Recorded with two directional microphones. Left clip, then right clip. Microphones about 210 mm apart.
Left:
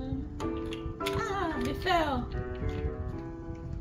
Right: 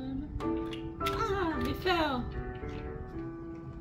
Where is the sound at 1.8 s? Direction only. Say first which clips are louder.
Left 2 dB; 5° right (ahead or behind).